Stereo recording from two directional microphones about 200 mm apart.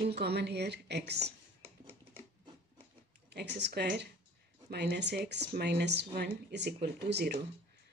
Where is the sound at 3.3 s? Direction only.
60° right (ahead or behind).